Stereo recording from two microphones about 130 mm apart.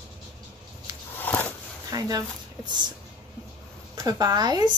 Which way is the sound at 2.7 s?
35° right (ahead or behind).